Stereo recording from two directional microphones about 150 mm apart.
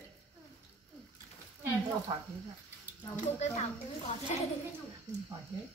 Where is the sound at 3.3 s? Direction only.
45° left (ahead or behind).